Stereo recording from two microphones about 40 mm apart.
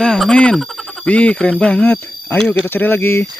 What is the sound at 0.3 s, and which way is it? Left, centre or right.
Speech, left.